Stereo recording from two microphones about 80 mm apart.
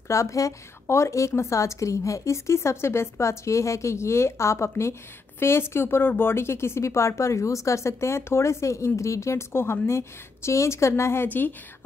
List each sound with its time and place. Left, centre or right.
0.1 s speech: left
11.2 s a woman's voice: left